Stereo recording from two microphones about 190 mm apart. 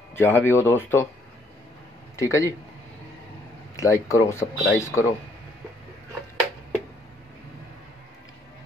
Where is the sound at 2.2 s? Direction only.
15° left (ahead or behind).